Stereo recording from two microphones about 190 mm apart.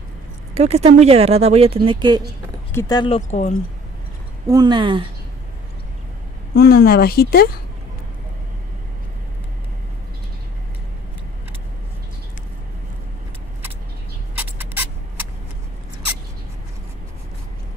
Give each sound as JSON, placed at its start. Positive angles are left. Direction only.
{"t": 0.6, "sound": "speech", "side_deg": -35}
{"t": 2.7, "sound": "speech", "side_deg": 15}
{"t": 3.2, "sound": "speech", "side_deg": 35}
{"t": 4.5, "sound": "speech", "side_deg": -20}
{"t": 6.5, "sound": "a woman's voice", "side_deg": 55}
{"t": 14.6, "sound": "rodents", "side_deg": -10}